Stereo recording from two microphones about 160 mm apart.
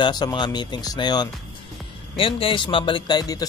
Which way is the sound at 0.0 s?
25° left (ahead or behind).